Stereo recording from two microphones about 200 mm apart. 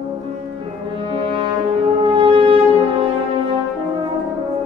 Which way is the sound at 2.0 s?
25° right (ahead or behind).